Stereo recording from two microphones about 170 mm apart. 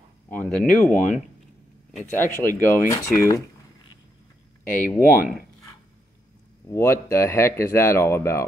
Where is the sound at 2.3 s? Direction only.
15° right (ahead or behind).